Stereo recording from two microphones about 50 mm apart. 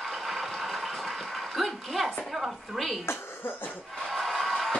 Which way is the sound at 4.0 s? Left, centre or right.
Centre.